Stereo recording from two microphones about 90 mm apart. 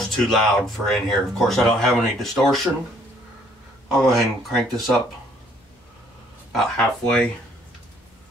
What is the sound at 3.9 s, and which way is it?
Speech, centre (ahead or behind).